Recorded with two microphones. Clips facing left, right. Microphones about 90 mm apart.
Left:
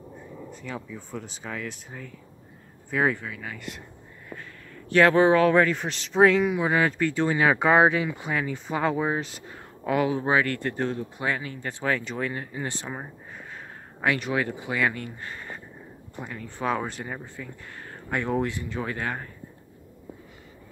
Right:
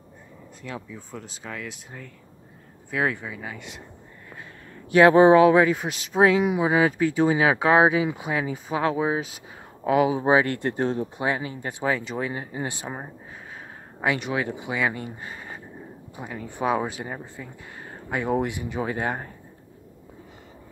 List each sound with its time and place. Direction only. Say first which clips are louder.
0.6 s speech: right 2 dB; centre (ahead or behind)
3.2 s speech: right 1 dB; 10° right (ahead or behind)
4.8 s speech: right 4 dB; 15° right (ahead or behind)
6.4 s speech: right 2 dB; 15° right (ahead or behind)